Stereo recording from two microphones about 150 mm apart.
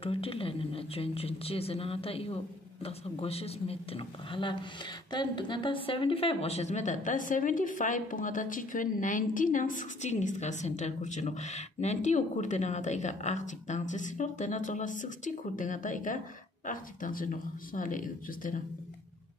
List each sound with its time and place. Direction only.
0.0 s a woman's voice: 40° left (ahead or behind); by 18.6 s 60° left (ahead or behind)